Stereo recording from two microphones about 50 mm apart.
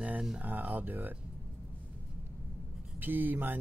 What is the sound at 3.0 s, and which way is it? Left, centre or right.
Speech, right.